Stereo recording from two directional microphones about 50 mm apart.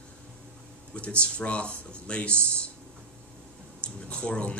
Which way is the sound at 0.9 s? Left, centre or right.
Left.